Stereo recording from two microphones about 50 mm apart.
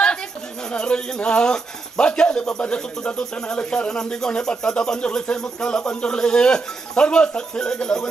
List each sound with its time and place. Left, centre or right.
0.7 s speech: centre